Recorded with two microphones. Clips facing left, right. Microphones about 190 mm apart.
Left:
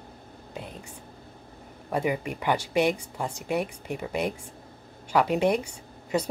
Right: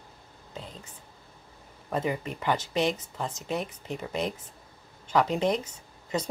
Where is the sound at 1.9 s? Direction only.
10° left (ahead or behind).